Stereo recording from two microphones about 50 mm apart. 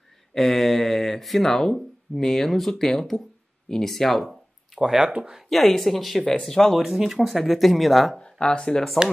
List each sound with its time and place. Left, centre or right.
0.3 s speech: centre
4.3 s a sound: centre
5.5 s speech: centre
6.8 s speech: centre
8.2 s speech: centre